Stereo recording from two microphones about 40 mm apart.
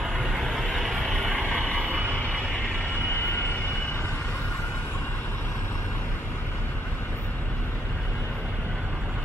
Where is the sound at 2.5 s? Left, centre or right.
Left.